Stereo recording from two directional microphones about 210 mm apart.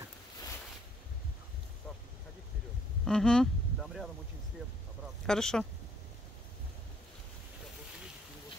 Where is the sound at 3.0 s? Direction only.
5° left (ahead or behind).